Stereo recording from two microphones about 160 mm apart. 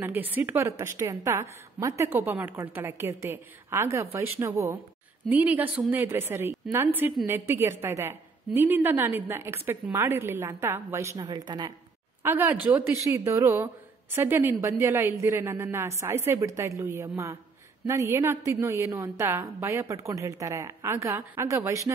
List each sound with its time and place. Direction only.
0.0 s a woman's voice: 10° right (ahead or behind)
12.2 s a woman's voice: 15° right (ahead or behind)